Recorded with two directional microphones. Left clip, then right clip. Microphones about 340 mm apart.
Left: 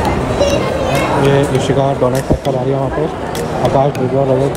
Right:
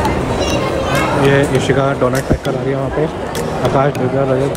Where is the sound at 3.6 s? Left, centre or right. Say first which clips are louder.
Left 1 dB; centre.